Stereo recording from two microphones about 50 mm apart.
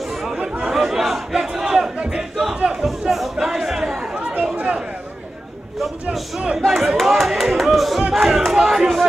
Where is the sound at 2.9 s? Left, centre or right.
Centre.